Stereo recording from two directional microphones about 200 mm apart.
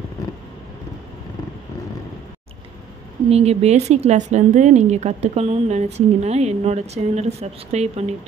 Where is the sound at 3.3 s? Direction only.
30° right (ahead or behind).